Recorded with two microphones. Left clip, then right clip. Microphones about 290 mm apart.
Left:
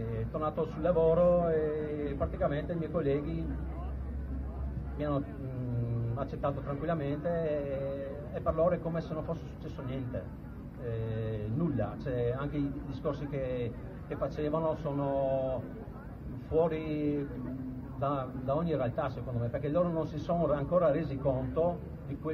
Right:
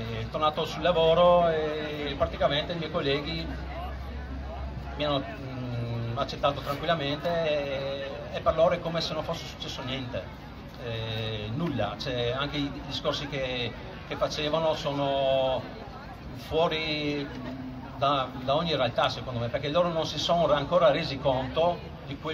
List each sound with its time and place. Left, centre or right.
0.4 s a man's voice: right
4.9 s a man's voice: right
10.9 s a man's voice: right
16.5 s a man's voice: right
20.0 s a man's voice: centre
20.2 s a man's voice: right